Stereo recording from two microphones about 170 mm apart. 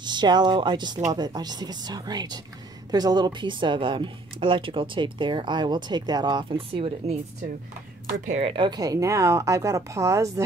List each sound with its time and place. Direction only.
0.0 s speech: 25° right (ahead or behind)
8.3 s speech: 35° right (ahead or behind); by 10.4 s 15° right (ahead or behind)